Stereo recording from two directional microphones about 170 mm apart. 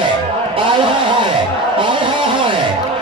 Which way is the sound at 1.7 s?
30° right (ahead or behind).